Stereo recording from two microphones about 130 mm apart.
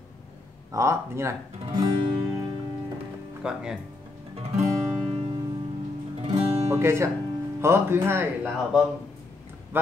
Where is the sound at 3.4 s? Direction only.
5° right (ahead or behind).